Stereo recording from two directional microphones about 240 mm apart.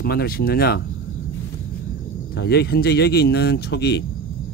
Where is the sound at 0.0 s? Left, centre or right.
Left.